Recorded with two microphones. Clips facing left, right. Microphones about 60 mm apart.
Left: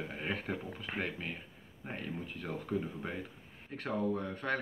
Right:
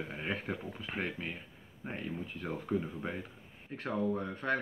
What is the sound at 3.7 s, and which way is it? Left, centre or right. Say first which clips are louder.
Speech: right 1 dB; right.